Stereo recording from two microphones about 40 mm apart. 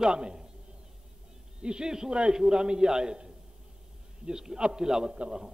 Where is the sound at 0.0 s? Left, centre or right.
Right.